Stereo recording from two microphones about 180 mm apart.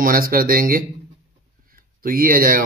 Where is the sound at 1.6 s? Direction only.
50° right (ahead or behind).